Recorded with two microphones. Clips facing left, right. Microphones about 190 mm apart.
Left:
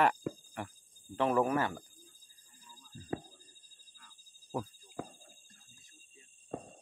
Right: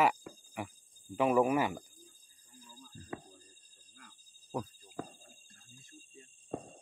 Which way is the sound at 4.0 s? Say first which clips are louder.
Right 6 dB; 60° right (ahead or behind).